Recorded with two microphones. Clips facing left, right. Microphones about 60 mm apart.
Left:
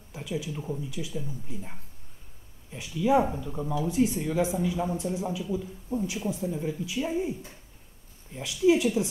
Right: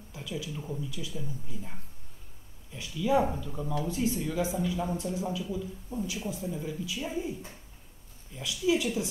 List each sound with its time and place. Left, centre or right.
0.1 s a man's voice: left
8.4 s a man's voice: left